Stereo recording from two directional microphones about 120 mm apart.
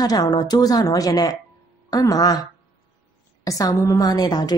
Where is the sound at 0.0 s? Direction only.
30° left (ahead or behind).